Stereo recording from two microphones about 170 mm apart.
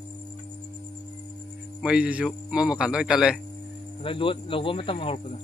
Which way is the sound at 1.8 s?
5° right (ahead or behind).